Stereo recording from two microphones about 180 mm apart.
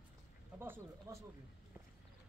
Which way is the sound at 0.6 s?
15° right (ahead or behind).